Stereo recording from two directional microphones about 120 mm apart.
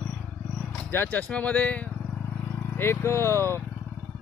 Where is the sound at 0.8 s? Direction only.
15° left (ahead or behind).